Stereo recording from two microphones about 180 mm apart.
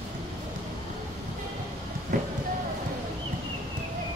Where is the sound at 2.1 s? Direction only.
45° right (ahead or behind).